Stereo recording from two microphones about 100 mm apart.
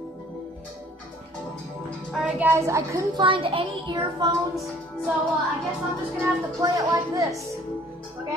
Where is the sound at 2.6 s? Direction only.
30° right (ahead or behind).